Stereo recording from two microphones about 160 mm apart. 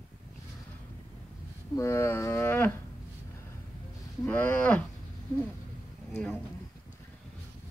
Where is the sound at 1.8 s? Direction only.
15° left (ahead or behind).